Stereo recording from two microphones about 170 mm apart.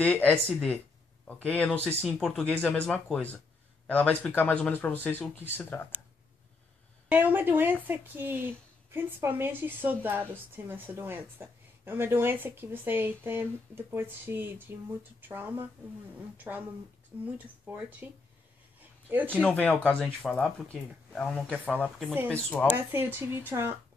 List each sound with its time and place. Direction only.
0.0 s a man's voice: 10° left (ahead or behind)
7.1 s speech: 10° right (ahead or behind)
17.6 s speech: 10° right (ahead or behind)
19.5 s a man's voice: 5° left (ahead or behind)
22.8 s speech: 15° right (ahead or behind)